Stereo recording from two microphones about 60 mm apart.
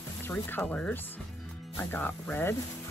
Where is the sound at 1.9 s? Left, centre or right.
Left.